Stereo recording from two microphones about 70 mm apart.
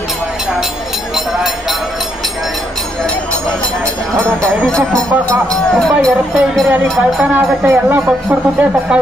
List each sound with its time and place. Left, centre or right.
1.1 s vehicle: centre
5.8 s speech: centre
6.7 s speech: right